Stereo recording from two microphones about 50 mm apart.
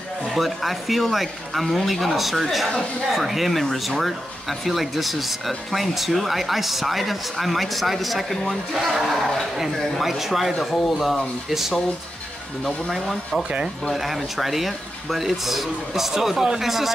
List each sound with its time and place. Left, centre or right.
0.3 s speech: centre
13.4 s speech: right
13.9 s speech: centre